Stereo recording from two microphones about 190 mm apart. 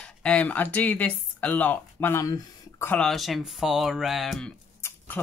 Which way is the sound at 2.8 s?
5° left (ahead or behind).